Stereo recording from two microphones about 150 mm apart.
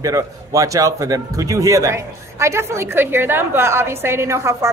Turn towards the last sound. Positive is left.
turn(degrees=-20)  # may be behind; listen again after turning